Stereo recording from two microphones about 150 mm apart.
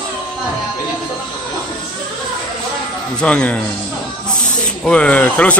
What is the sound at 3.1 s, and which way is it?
Speech, 5° left (ahead or behind).